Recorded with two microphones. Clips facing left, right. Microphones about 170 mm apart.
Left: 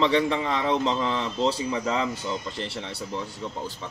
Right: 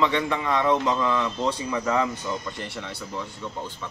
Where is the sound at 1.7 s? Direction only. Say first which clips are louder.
Right 2 dB; 50° right (ahead or behind).